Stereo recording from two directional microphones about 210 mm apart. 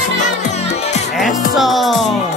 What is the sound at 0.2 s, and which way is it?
Music, 35° left (ahead or behind).